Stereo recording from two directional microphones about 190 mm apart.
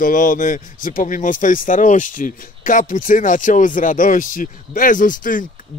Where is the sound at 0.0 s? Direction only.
45° left (ahead or behind).